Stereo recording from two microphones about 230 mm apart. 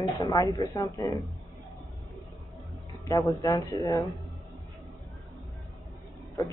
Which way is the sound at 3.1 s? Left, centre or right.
Centre.